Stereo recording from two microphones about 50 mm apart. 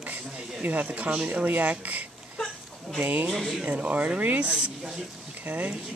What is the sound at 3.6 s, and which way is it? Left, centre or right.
Speech, right.